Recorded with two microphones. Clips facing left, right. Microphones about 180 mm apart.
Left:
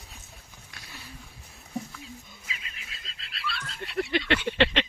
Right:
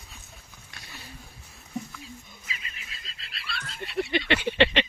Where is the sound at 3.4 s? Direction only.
55° right (ahead or behind).